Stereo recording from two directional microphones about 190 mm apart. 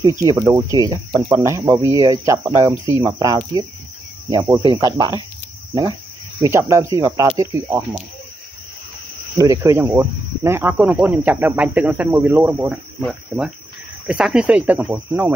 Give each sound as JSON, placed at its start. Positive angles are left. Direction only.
{"t": 0.0, "sound": "speech", "side_deg": -15}
{"t": 4.3, "sound": "cricket", "side_deg": -20}
{"t": 6.4, "sound": "speech", "side_deg": -15}
{"t": 9.4, "sound": "speech", "side_deg": -15}
{"t": 13.0, "sound": "speech", "side_deg": 0}